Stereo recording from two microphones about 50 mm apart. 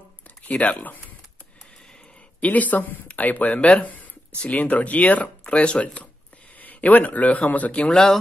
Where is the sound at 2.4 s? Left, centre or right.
Left.